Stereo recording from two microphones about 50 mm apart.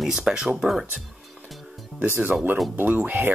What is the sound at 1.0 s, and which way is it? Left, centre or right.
Music, centre.